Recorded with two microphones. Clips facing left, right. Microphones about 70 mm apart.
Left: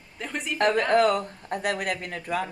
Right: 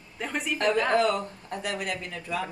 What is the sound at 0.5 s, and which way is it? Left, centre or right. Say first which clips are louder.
Speech: left 3 dB; left.